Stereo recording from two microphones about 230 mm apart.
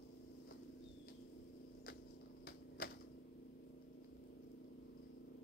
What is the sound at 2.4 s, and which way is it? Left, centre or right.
Typewriter, left.